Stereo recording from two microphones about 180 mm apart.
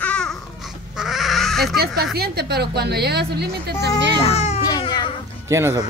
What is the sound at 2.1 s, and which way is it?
A woman's voice, 65° right (ahead or behind).